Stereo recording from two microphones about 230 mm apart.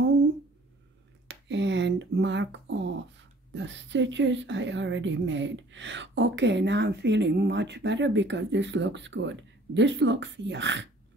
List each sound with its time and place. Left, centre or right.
1.2 s speech: right